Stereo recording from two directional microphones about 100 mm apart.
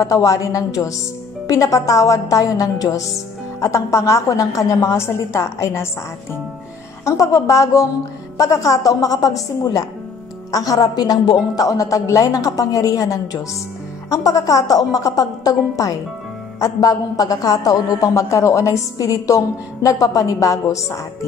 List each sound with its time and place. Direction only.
0.0 s a woman's voice: 35° left (ahead or behind)
7.1 s a woman's voice: 30° left (ahead or behind)